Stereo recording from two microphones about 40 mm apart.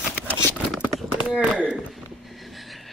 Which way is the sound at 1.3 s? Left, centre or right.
Right.